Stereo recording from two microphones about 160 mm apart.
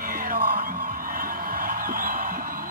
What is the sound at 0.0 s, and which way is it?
Music, 60° right (ahead or behind).